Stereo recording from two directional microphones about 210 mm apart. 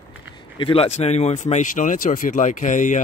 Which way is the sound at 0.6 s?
25° left (ahead or behind).